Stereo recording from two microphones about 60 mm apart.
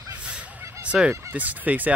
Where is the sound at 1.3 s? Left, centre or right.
Right.